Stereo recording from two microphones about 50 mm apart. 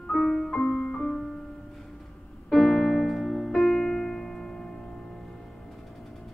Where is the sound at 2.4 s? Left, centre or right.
Centre.